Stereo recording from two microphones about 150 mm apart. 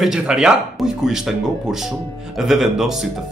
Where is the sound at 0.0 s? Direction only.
5° right (ahead or behind).